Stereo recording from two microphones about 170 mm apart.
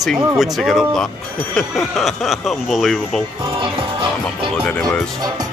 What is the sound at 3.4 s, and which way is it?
Speech, 30° right (ahead or behind).